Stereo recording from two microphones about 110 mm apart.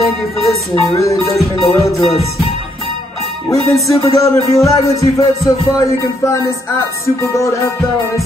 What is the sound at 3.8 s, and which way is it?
Music, 30° left (ahead or behind).